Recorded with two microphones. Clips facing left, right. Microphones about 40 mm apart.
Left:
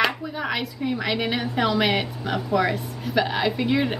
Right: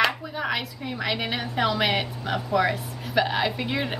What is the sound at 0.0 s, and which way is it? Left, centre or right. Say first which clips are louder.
A woman's voice: even; centre.